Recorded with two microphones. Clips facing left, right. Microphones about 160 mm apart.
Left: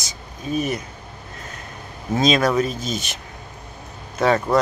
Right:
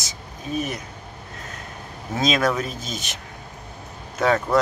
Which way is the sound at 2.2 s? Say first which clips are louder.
Left 4 dB; centre (ahead or behind).